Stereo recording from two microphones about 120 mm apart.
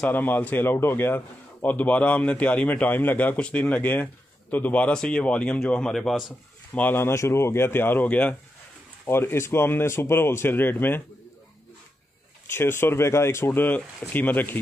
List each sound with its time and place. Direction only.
0.0 s a man's voice: 15° left (ahead or behind)
6.7 s speech: 15° left (ahead or behind)
12.4 s speech: 20° left (ahead or behind)